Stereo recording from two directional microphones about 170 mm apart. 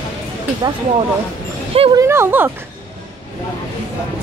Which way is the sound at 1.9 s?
15° right (ahead or behind).